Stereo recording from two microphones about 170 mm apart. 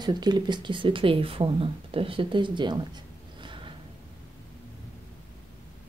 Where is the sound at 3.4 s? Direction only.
30° right (ahead or behind).